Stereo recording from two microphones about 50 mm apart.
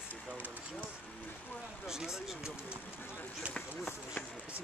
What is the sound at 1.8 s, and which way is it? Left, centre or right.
Speech, centre.